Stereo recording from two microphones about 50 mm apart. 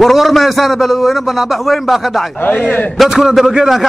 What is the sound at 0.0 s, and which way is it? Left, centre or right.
A man's voice, centre.